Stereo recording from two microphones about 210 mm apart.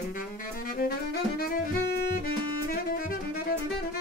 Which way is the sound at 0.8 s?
45° left (ahead or behind).